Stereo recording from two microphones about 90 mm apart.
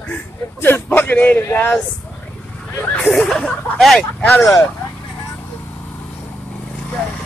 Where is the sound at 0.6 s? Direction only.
25° left (ahead or behind).